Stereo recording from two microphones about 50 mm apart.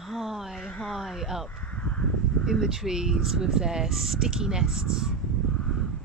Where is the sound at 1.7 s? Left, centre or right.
Left.